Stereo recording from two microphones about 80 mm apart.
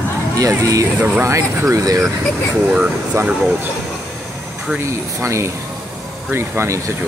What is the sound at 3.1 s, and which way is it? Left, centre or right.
Speech, right.